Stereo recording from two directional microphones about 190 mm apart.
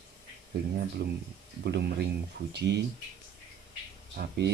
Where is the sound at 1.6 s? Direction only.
65° right (ahead or behind).